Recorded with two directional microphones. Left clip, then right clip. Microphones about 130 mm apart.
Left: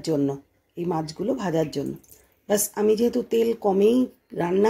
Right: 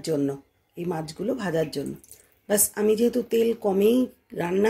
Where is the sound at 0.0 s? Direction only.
Centre (ahead or behind).